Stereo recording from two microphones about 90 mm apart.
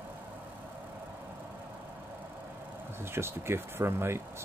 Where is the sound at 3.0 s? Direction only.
25° right (ahead or behind).